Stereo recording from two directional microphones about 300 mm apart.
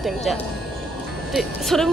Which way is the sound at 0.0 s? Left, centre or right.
Centre.